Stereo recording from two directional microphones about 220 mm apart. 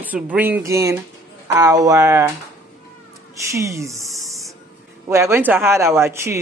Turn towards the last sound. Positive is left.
turn(degrees=-10)  # may be behind; listen again after turning